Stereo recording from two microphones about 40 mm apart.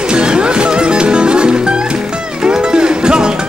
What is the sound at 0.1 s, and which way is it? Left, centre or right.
Music, right.